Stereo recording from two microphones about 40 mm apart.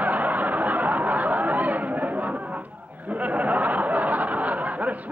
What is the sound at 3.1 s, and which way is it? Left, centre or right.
Speech, right.